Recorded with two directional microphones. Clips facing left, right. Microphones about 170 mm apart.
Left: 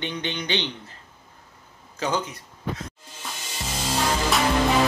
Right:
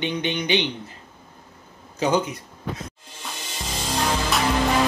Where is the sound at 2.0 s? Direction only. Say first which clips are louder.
Right 5 dB; 15° right (ahead or behind).